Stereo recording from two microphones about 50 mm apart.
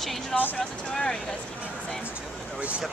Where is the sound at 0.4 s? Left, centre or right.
Left.